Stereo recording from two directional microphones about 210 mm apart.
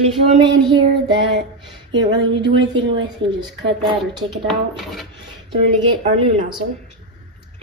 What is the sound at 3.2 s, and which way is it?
Speech, 25° right (ahead or behind).